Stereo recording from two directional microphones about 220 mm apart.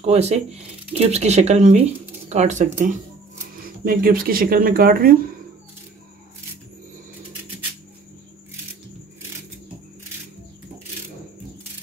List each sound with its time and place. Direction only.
0.0 s speech: 30° right (ahead or behind)